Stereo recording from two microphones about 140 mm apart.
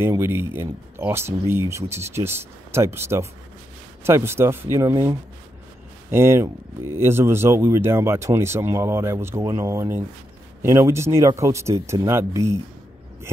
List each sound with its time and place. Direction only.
0.0 s speech: 20° right (ahead or behind)